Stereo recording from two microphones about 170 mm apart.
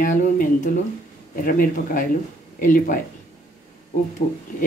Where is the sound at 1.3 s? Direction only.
55° left (ahead or behind).